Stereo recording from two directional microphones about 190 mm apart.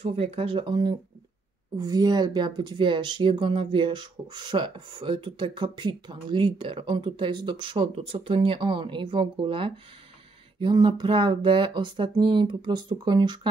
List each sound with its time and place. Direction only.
0.0 s speech: 30° right (ahead or behind)